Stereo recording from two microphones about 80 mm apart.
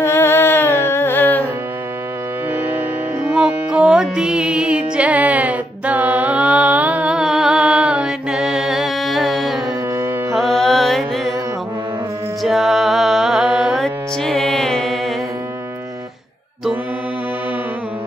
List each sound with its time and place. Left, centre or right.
0.0 s music: left
3.3 s music: centre
12.4 s music: centre
13.8 s music: centre